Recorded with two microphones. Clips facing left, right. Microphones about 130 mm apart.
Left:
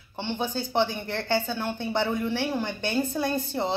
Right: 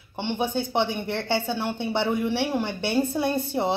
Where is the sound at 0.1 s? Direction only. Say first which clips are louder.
Right 3 dB; 20° right (ahead or behind).